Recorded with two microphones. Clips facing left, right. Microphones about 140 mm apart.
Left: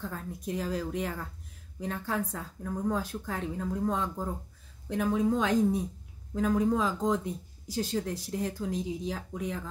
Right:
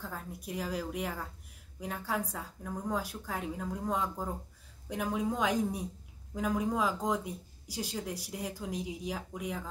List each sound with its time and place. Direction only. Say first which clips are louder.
0.1 s a woman's voice: left 5 dB; 10° right (ahead or behind)